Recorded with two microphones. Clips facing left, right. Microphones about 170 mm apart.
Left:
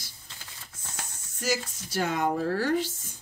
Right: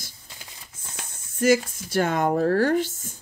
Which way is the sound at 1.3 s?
55° right (ahead or behind).